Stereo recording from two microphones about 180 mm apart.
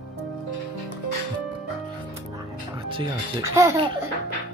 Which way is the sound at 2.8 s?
30° right (ahead or behind).